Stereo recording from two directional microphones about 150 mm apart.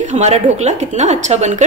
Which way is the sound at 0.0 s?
50° right (ahead or behind).